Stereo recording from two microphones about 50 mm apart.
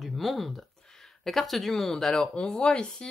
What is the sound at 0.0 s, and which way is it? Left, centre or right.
Speech, centre.